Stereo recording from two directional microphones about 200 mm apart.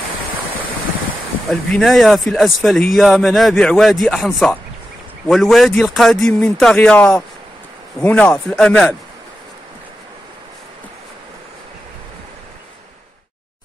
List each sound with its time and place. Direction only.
1.5 s a man's voice: centre (ahead or behind)